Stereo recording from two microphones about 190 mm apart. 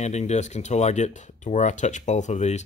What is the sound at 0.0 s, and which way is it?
Speech, 35° left (ahead or behind).